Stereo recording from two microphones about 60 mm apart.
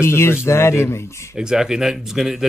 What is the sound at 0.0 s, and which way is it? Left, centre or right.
Speech, left.